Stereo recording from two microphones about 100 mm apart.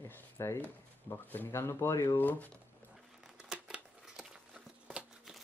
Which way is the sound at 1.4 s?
30° left (ahead or behind).